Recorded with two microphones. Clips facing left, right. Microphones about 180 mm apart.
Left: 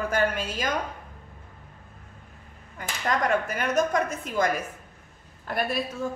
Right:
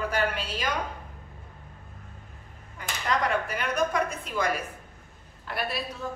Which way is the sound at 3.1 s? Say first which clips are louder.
Left 2 dB; 45° left (ahead or behind).